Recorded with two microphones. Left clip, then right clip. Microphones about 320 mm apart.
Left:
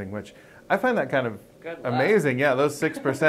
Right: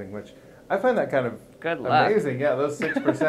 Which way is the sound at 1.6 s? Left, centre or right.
Right.